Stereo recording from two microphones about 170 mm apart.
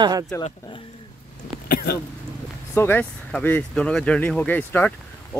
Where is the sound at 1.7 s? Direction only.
60° left (ahead or behind).